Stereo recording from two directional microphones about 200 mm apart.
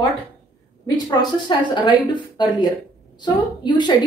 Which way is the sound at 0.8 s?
20° left (ahead or behind).